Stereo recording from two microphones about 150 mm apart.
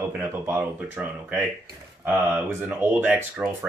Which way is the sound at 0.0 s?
15° right (ahead or behind).